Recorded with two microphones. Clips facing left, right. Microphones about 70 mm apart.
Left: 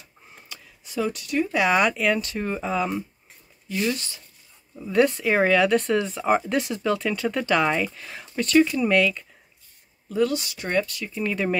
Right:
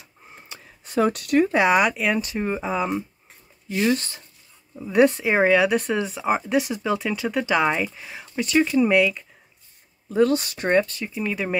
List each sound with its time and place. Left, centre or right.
0.8 s speech: right
1.7 s speech: centre
3.6 s speech: right
4.7 s speech: centre
10.0 s speech: right
10.7 s speech: right
11.1 s speech: centre